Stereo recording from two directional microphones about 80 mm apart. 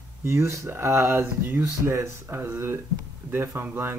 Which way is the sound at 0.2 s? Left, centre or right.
Right.